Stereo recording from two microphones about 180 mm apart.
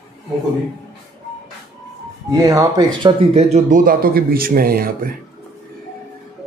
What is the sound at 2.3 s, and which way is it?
Speech, 20° right (ahead or behind).